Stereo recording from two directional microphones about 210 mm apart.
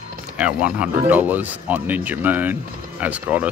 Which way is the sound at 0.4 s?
5° right (ahead or behind).